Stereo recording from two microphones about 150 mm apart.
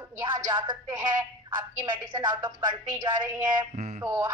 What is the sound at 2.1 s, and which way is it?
Speech, 30° right (ahead or behind).